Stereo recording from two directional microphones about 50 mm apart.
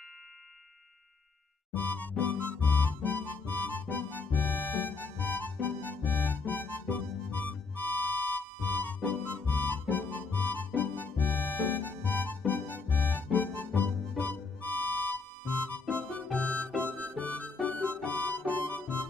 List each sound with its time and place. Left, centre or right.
1.7 s music: left
16.3 s harmonica: left
17.0 s music: left